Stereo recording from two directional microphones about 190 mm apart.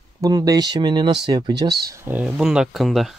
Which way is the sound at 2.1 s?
5° right (ahead or behind).